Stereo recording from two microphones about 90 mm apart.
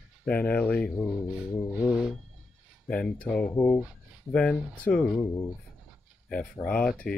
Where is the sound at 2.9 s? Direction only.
15° left (ahead or behind).